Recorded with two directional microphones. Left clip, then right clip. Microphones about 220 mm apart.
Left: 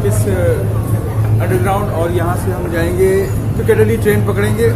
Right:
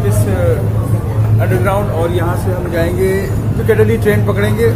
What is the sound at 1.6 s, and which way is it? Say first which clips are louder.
Speech: right 1 dB; centre (ahead or behind).